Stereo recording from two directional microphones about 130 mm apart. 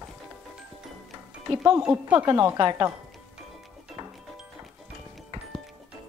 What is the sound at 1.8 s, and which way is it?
Speech, 10° right (ahead or behind).